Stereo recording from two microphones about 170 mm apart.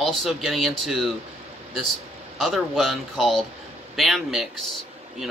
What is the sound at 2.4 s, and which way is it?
Speech, centre (ahead or behind).